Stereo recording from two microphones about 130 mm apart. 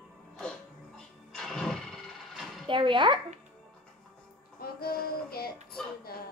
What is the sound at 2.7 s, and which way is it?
Speech, 40° right (ahead or behind).